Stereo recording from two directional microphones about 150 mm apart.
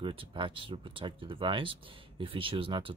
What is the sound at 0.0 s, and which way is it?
Speech, 35° right (ahead or behind).